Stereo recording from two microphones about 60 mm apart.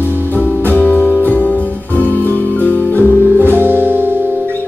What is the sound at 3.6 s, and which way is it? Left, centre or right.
Music, right.